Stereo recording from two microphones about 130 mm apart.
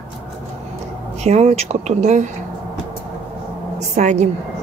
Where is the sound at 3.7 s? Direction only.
65° right (ahead or behind).